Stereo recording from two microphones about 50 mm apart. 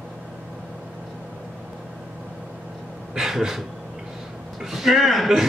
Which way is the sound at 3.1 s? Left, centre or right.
Centre.